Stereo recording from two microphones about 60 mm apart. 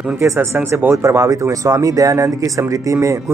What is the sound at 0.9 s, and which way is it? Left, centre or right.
Speech, right.